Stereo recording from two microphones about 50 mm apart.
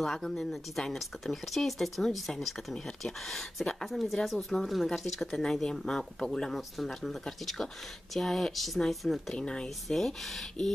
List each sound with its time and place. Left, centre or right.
0.0 s speech: centre
9.3 s speech: centre
9.8 s speech: centre